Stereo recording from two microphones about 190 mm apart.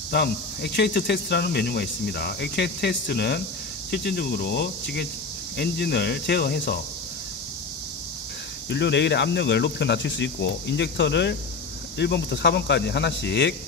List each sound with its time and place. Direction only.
0.1 s speech: 60° left (ahead or behind)
8.6 s speech: 65° left (ahead or behind)